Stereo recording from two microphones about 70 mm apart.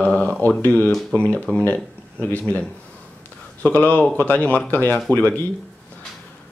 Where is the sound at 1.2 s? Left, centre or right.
Left.